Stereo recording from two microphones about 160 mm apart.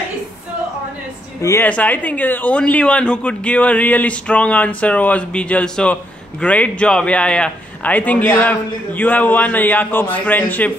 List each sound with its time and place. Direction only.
1.4 s speech: 15° left (ahead or behind)